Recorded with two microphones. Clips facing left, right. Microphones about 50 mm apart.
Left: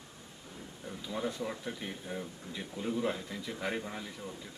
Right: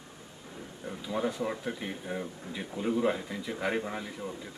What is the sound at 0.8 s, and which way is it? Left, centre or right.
Speech, centre.